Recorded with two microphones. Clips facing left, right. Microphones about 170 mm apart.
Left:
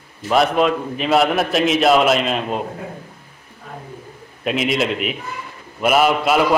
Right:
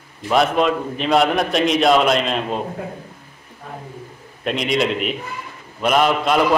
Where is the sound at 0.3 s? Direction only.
Centre (ahead or behind).